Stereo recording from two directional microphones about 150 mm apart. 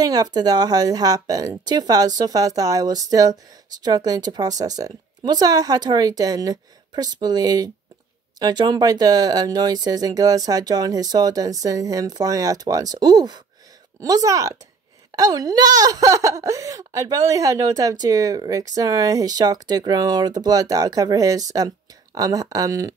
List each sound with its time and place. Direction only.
0.0 s speech: 25° right (ahead or behind)